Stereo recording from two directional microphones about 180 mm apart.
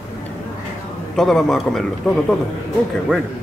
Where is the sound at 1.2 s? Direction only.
Centre (ahead or behind).